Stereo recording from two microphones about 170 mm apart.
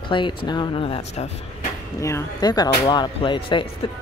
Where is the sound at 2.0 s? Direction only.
15° left (ahead or behind).